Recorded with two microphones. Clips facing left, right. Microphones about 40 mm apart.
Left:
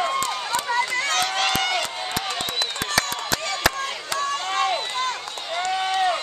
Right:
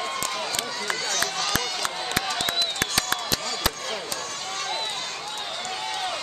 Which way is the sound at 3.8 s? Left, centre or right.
Left.